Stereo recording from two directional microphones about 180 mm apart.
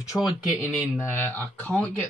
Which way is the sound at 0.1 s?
Centre (ahead or behind).